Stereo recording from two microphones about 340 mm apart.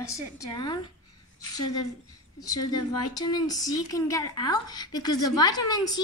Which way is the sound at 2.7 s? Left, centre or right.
Centre.